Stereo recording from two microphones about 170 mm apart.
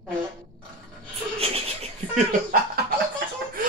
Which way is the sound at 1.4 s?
40° right (ahead or behind).